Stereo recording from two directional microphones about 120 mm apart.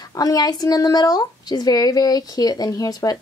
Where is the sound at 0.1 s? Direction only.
30° left (ahead or behind).